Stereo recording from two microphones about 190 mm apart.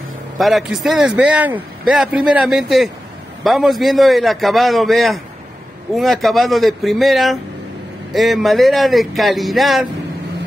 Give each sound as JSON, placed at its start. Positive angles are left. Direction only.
{"t": 0.4, "sound": "a man's voice", "side_deg": 0}